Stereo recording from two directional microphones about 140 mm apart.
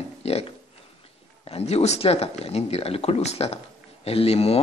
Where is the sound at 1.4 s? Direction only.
45° left (ahead or behind).